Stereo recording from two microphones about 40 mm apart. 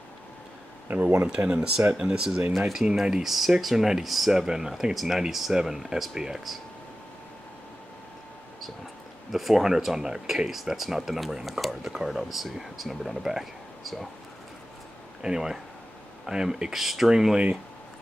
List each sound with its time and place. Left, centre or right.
0.8 s speech: right
1.6 s speech: centre
9.3 s speech: centre
15.2 s speech: centre